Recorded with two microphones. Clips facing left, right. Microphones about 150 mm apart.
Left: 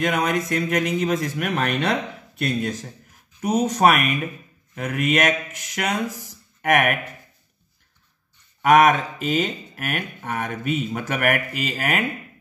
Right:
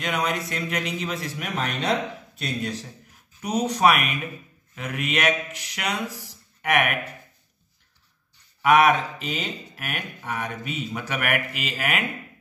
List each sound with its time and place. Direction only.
0.0 s speech: 50° left (ahead or behind)
8.6 s speech: 45° left (ahead or behind)